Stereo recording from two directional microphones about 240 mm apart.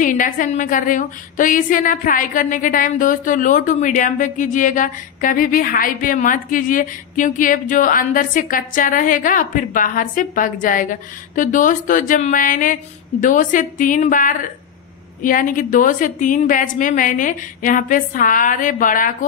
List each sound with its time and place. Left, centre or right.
0.0 s a woman's voice: left